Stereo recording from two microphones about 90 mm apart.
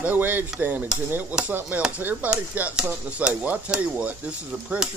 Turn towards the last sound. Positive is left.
turn(degrees=-10)  # may be behind; listen again after turning